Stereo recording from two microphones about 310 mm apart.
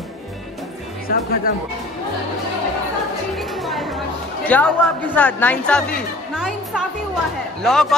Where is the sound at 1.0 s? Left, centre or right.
Left.